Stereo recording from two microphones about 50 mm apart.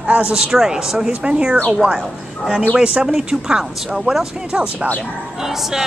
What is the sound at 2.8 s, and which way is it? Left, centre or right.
Speech, right.